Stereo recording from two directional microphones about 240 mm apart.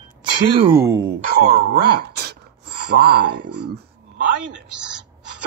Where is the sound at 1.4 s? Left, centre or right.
Right.